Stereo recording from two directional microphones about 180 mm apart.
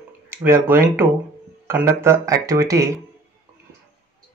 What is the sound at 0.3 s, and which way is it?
Speech, 10° right (ahead or behind).